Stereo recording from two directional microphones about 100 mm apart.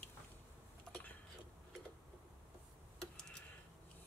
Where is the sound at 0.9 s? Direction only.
15° left (ahead or behind).